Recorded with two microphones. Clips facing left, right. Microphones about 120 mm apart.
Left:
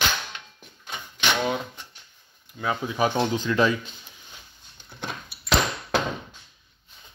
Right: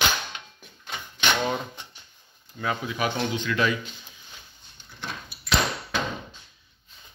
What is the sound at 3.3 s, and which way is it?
Speech, 35° left (ahead or behind).